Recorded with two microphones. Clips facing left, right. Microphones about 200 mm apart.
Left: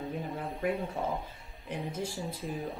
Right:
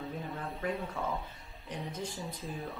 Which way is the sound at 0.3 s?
15° left (ahead or behind).